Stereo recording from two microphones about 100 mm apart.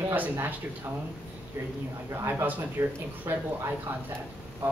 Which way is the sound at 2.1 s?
25° right (ahead or behind).